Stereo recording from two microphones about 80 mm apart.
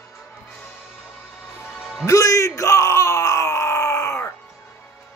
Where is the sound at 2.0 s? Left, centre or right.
Left.